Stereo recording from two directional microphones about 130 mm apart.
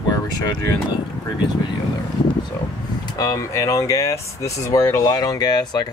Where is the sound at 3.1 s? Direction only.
25° left (ahead or behind).